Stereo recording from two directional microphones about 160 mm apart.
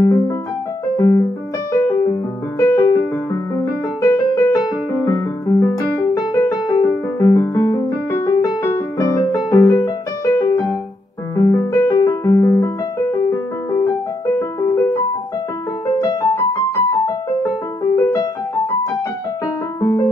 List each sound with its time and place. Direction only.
0.0 s music: 25° left (ahead or behind)
1.8 s piano: 25° left (ahead or behind)
2.6 s music: 20° left (ahead or behind)
11.3 s piano: 20° left (ahead or behind)
16.0 s music: 25° left (ahead or behind)
19.8 s piano: 25° left (ahead or behind)